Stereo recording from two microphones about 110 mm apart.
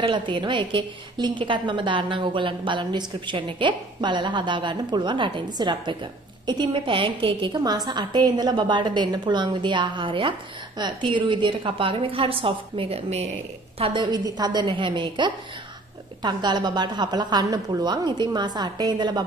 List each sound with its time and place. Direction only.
0.0 s a woman's voice: 50° right (ahead or behind); by 13.3 s 70° right (ahead or behind)
13.7 s a woman's voice: 60° right (ahead or behind)
14.1 s a woman's voice: 40° right (ahead or behind)